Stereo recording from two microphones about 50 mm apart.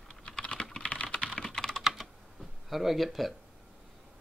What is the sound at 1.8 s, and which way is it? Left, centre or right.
Typing, centre.